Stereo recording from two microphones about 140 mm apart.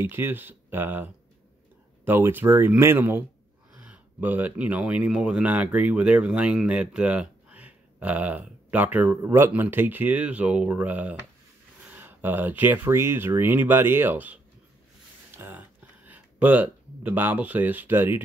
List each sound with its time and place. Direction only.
0.0 s speech: 15° right (ahead or behind)
15.3 s a sound: 15° right (ahead or behind)
16.1 s speech: 10° right (ahead or behind)